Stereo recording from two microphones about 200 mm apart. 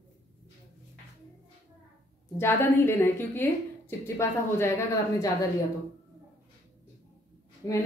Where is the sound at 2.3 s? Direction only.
10° left (ahead or behind).